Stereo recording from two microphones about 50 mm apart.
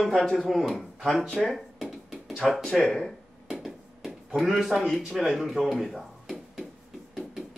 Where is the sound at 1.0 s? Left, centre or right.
Centre.